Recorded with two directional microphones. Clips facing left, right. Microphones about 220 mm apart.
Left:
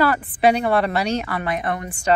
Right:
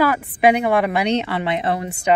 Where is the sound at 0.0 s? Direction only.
10° right (ahead or behind).